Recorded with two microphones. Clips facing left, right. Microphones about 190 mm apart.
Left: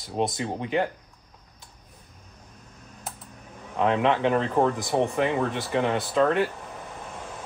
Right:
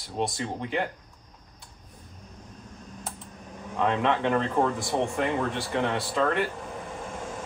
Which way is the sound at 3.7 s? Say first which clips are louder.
Left 3 dB; 15° left (ahead or behind).